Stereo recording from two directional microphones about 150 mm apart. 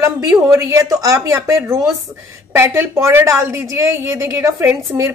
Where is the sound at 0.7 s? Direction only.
20° right (ahead or behind).